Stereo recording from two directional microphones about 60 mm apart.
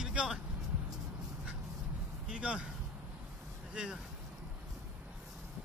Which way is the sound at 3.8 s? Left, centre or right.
Centre.